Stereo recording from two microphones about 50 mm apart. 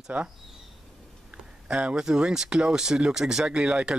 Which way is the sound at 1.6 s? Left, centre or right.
Right.